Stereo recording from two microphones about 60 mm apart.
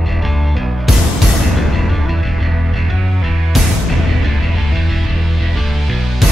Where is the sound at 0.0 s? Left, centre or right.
Centre.